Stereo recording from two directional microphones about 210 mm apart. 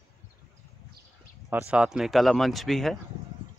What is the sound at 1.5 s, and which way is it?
Speech, 5° right (ahead or behind).